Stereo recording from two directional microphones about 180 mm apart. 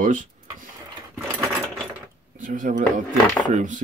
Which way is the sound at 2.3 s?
45° right (ahead or behind).